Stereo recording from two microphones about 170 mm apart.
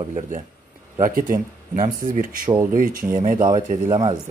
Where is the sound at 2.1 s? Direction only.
55° right (ahead or behind).